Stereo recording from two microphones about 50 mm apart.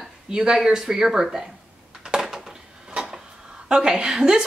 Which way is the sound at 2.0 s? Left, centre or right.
Centre.